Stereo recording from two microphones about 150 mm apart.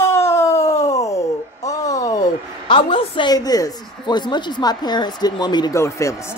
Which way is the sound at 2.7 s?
35° left (ahead or behind).